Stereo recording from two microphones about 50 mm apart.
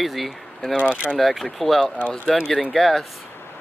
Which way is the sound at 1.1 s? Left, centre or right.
Centre.